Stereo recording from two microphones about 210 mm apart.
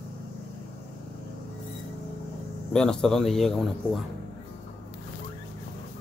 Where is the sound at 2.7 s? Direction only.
5° left (ahead or behind).